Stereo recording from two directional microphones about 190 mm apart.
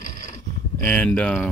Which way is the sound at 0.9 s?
5° left (ahead or behind).